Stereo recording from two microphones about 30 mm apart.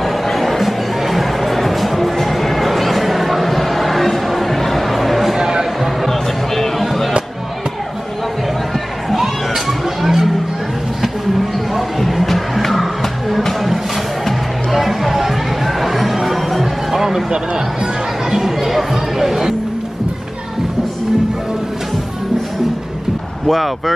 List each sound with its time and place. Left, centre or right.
0.0 s music: centre
5.4 s music: centre
6.0 s music: centre
6.8 s music: centre
9.1 s children playing: centre
11.7 s music: centre
14.7 s a sound: centre
18.4 s music: centre
23.4 s vehicle: centre